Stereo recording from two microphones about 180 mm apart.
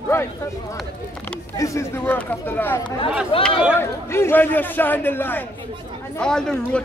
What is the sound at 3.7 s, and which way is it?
A man's voice, 15° left (ahead or behind).